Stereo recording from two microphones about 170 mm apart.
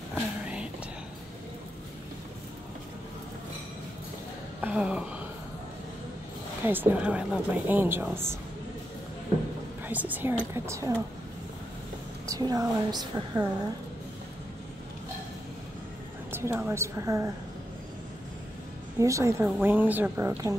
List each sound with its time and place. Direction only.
0.1 s a sound: 5° right (ahead or behind)
4.6 s a sound: 10° right (ahead or behind)
6.6 s speech: 10° right (ahead or behind)
9.8 s a woman's voice: 10° right (ahead or behind)
12.3 s a woman's voice: 20° right (ahead or behind)
16.3 s speech: 15° right (ahead or behind)
18.9 s speech: 20° right (ahead or behind)